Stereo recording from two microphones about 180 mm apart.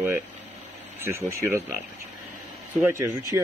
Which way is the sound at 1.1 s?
15° right (ahead or behind).